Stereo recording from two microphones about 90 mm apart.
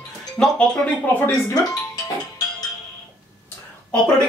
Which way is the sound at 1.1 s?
20° left (ahead or behind).